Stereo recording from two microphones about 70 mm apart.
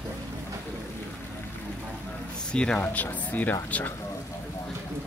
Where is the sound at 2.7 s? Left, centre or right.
Left.